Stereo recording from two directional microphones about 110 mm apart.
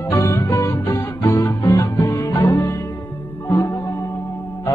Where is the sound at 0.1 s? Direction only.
25° left (ahead or behind).